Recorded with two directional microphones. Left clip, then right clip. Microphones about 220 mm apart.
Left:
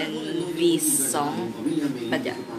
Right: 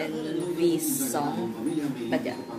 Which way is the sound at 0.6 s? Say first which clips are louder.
Left 4 dB; 5° right (ahead or behind).